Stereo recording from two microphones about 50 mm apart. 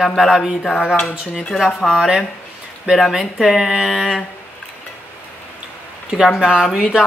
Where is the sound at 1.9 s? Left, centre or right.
Centre.